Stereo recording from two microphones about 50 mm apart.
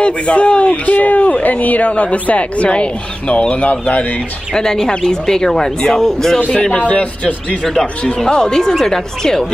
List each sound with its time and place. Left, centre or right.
0.0 s speech: left
4.6 s speech: centre
6.6 s speech: left
8.2 s speech: centre